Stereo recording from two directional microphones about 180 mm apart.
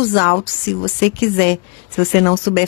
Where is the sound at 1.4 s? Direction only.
60° left (ahead or behind).